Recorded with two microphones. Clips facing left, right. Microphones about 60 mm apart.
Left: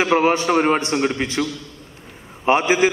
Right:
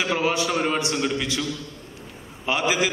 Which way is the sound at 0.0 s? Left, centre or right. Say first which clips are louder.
Left 6 dB; left.